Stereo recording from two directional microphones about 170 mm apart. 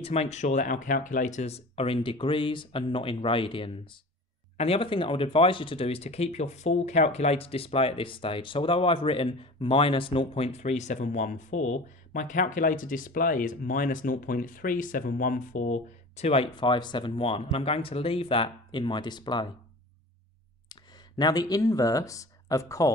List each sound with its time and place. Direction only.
0.0 s speech: 40° left (ahead or behind)
21.2 s speech: 20° left (ahead or behind)